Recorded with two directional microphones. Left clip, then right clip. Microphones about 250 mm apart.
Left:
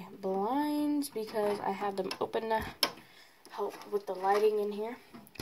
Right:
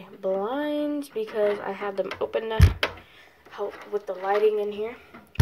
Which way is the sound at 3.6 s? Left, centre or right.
Left.